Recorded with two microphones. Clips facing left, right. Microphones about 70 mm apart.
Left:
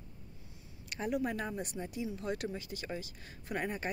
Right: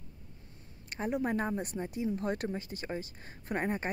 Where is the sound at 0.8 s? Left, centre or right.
Right.